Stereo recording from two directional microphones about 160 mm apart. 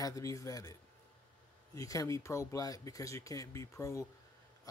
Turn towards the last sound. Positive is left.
turn(degrees=20)  # may be behind; listen again after turning